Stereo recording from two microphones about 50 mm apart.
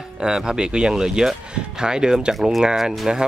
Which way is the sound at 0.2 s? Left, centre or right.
Centre.